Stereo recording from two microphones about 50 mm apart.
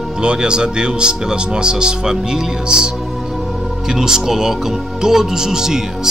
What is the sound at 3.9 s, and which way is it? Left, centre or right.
Speech, centre.